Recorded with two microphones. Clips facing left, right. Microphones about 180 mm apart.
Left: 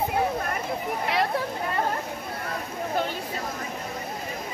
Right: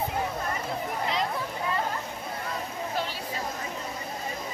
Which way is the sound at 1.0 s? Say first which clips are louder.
Left 4 dB; 65° left (ahead or behind).